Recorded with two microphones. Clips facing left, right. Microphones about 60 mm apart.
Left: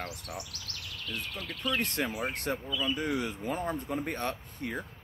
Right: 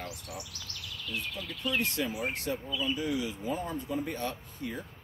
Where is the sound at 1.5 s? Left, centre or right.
Left.